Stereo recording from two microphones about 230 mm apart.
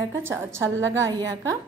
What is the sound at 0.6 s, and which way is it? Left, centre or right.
Speech, right.